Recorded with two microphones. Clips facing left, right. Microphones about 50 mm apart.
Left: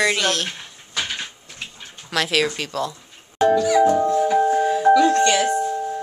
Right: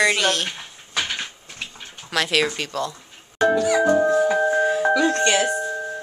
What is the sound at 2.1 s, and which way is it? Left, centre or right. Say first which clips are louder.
Speech: even; centre.